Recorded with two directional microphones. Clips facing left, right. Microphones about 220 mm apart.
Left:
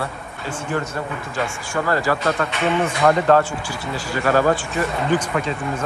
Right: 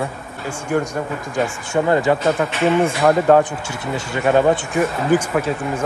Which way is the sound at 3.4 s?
20° right (ahead or behind).